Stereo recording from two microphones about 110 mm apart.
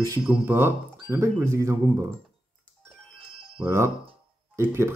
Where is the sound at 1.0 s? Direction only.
20° right (ahead or behind).